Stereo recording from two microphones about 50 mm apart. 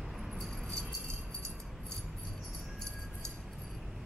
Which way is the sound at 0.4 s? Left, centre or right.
Centre.